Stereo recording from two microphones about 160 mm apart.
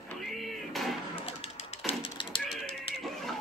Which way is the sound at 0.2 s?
Centre (ahead or behind).